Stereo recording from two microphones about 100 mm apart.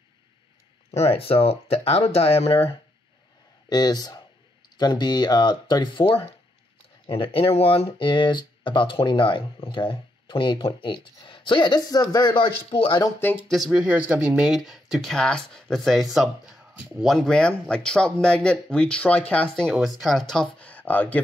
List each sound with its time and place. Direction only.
0.9 s speech: 85° left
3.6 s speech: 45° left (ahead or behind)
7.1 s speech: 70° left (ahead or behind); by 7.9 s 85° left
8.0 s speech: 55° left (ahead or behind)
13.7 s speech: 10° right (ahead or behind); by 21.2 s 15° left (ahead or behind)